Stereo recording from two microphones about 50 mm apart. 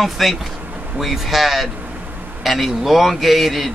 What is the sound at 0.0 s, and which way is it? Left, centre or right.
Speech, centre.